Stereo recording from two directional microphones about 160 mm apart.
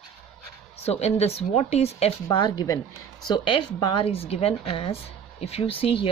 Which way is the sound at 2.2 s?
25° left (ahead or behind).